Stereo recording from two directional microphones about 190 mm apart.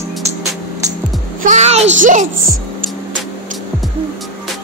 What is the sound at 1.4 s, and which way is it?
Music, 40° right (ahead or behind).